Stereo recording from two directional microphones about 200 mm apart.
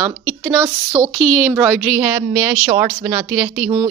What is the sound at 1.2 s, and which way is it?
A woman's voice, centre (ahead or behind).